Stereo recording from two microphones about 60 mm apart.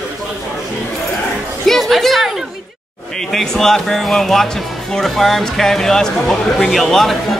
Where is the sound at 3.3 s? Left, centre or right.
Centre.